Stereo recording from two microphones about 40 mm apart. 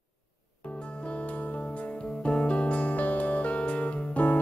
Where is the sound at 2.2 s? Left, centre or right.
Left.